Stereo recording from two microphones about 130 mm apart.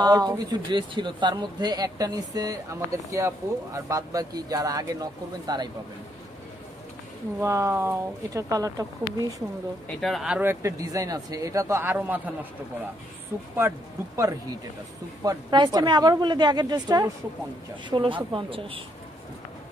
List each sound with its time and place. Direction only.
0.0 s a woman's voice: 30° right (ahead or behind)
7.4 s speech: 20° right (ahead or behind)
9.9 s speech: centre (ahead or behind)
10.5 s speech: 25° right (ahead or behind)
13.6 s speech: 20° right (ahead or behind)
15.2 s a woman's voice: 35° right (ahead or behind)